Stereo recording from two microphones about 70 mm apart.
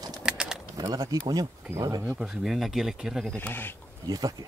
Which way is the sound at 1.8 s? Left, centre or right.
Right.